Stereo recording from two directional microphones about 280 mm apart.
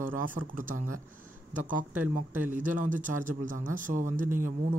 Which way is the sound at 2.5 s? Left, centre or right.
Right.